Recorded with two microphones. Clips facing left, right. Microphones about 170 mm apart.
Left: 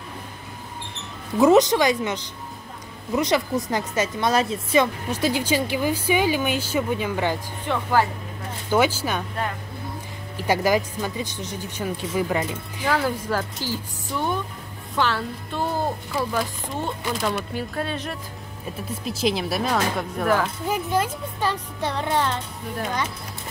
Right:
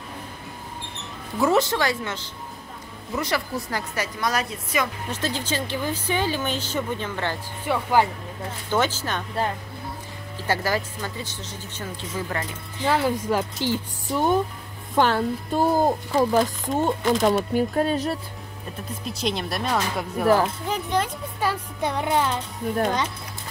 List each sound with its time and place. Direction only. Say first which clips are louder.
1.4 s a woman's voice: left 5 dB; 20° left (ahead or behind)
5.1 s speech: left 6 dB; 10° left (ahead or behind)
7.6 s music: right 1 dB; 10° right (ahead or behind)
8.6 s speech: left 3 dB; 10° left (ahead or behind)
10.3 s speech: left 4 dB; 15° left (ahead or behind)
12.8 s music: right 2 dB; 15° right (ahead or behind)
14.1 s speech: right 5 dB; 40° right (ahead or behind)
19.0 s speech: left 3 dB; centre (ahead or behind)
21.4 s music: right 1 dB; 10° right (ahead or behind)